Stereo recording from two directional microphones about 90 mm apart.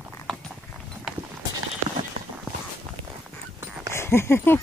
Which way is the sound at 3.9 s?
30° left (ahead or behind).